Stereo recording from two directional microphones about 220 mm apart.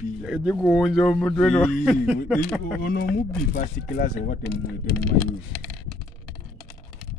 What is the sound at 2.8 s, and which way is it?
Speech, 40° left (ahead or behind).